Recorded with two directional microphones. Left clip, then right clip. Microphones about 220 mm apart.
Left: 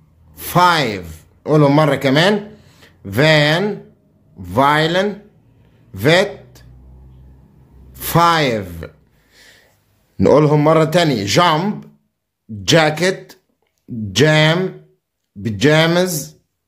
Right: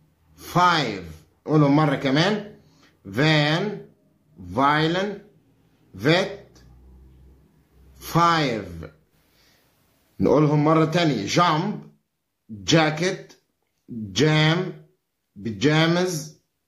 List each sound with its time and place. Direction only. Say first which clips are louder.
0.5 s a man's voice: left 6 dB; 40° left (ahead or behind)
8.0 s speech: left 6 dB; 40° left (ahead or behind)
10.1 s a man's voice: left 8 dB; 40° left (ahead or behind)
12.6 s speech: left 7 dB; 40° left (ahead or behind)